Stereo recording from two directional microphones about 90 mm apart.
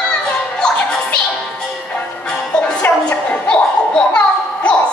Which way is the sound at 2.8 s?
15° left (ahead or behind).